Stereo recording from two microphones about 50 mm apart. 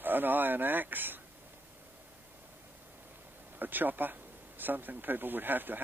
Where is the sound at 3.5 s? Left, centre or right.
Right.